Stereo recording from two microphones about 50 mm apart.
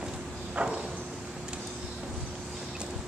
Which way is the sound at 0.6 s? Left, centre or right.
Right.